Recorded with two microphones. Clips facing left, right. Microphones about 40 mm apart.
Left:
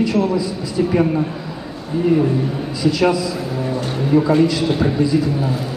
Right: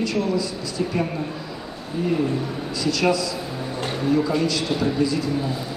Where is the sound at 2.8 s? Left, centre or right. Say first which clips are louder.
Left 5 dB; left.